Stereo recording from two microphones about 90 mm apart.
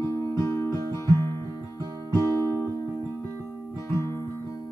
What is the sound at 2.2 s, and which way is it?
Music, 35° left (ahead or behind).